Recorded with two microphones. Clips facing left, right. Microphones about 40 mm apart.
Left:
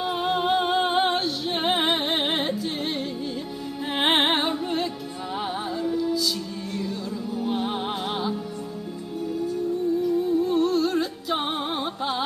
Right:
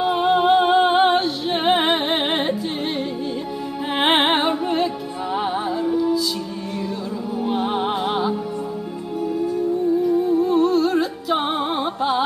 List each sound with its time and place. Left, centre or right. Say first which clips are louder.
0.0 s music: right 7 dB; centre
3.9 s music: right 4 dB; centre
7.4 s music: right 6 dB; centre
10.0 s music: right 4 dB; centre